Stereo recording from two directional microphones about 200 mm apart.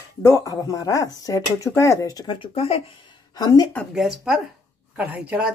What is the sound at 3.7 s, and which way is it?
Speech, 10° left (ahead or behind).